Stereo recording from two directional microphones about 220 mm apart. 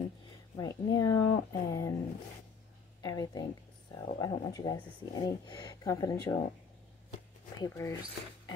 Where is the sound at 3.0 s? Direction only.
15° left (ahead or behind).